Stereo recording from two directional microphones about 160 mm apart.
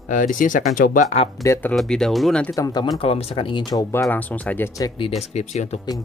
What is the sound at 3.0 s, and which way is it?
Speech, 40° left (ahead or behind).